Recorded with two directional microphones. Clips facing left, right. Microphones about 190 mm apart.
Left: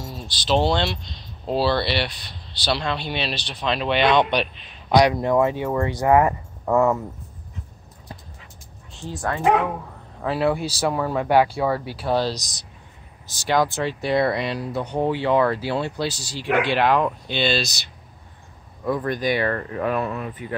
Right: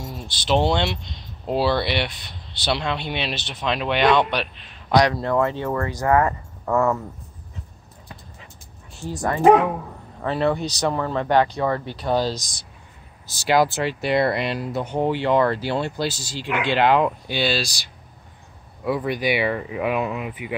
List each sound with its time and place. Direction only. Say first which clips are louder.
0.5 s speech: even; 20° right (ahead or behind)
4.9 s speech: left 2 dB; 15° left (ahead or behind)
8.9 s speech: right 2 dB; 15° right (ahead or behind)
10.2 s speech: even; 5° left (ahead or behind); by 17.7 s 10° right (ahead or behind)
18.9 s speech: even; 10° right (ahead or behind)